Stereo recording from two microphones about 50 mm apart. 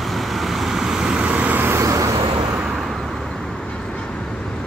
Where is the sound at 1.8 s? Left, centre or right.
Right.